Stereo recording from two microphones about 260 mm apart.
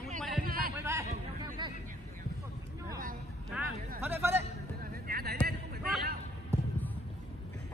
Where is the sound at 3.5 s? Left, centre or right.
Centre.